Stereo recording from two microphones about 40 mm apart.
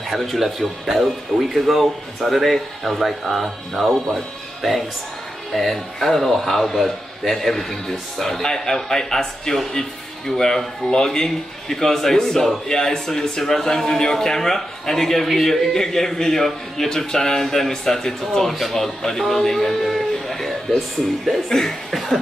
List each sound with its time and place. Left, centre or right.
0.1 s speech: centre
21.5 s cough: centre